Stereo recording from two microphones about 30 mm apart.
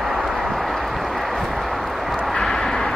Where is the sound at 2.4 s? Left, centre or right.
Centre.